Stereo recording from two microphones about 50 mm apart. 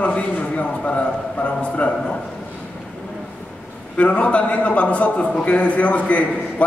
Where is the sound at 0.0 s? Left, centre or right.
Left.